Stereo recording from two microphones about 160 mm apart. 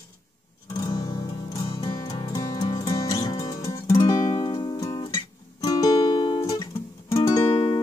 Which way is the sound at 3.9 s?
35° left (ahead or behind).